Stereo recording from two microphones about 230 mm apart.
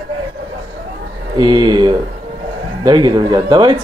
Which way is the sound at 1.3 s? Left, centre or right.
Centre.